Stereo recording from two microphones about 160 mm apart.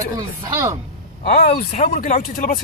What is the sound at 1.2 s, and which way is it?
Speech, 65° left (ahead or behind).